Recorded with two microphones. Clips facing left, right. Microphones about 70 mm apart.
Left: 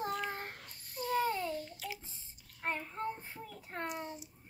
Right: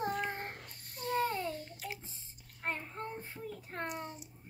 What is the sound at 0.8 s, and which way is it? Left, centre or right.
Babbling, right.